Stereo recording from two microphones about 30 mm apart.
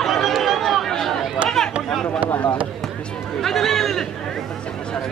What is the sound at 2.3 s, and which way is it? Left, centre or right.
Speech, left.